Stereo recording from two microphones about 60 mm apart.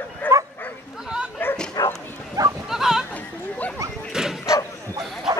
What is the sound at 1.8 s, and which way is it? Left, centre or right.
Bow-wow, left.